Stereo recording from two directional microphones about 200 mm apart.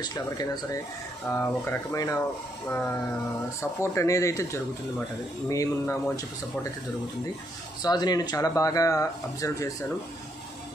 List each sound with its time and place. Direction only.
0.0 s speech: 20° left (ahead or behind)
7.8 s speech: 20° left (ahead or behind)